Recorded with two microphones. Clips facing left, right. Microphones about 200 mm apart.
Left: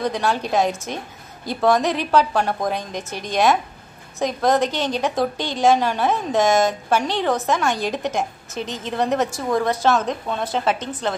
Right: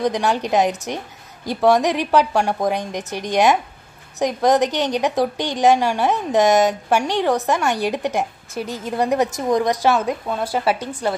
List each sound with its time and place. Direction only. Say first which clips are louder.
0.0 s a woman's voice: right 2 dB; 15° right (ahead or behind)